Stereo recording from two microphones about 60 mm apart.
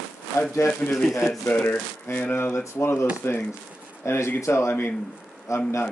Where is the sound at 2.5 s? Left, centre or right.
Left.